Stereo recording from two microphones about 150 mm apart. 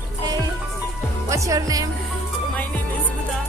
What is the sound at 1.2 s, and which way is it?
Speech, 20° right (ahead or behind).